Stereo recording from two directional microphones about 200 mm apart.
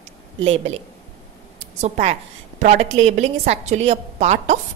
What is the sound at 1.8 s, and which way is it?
A woman's voice, 35° right (ahead or behind).